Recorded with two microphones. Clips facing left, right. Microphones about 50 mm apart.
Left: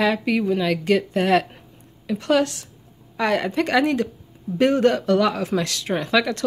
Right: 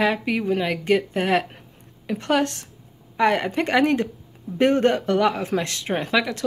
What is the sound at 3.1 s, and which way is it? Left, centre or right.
Speech, right.